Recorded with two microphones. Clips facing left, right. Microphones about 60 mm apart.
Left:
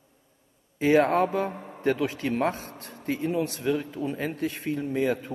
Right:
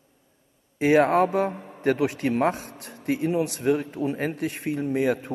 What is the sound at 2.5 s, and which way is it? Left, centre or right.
Speech, left.